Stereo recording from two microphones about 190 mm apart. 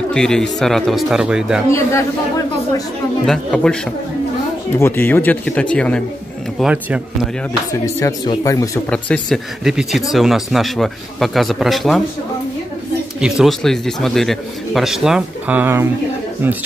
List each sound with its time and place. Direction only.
0.1 s speech: 5° left (ahead or behind)
1.7 s speech: 15° left (ahead or behind)
3.3 s speech: 5° left (ahead or behind)
4.7 s speech: 10° left (ahead or behind)
6.6 s a man's voice: 5° right (ahead or behind)
8.3 s speech: 15° left (ahead or behind)
8.9 s speech: 5° left (ahead or behind)
13.2 s speech: centre (ahead or behind)